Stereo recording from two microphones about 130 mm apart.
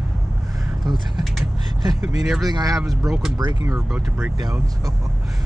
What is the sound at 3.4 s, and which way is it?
Speech, 35° right (ahead or behind).